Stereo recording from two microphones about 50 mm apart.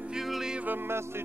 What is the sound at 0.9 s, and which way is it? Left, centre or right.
Music, right.